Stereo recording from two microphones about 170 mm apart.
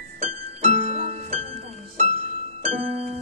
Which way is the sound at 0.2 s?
35° right (ahead or behind).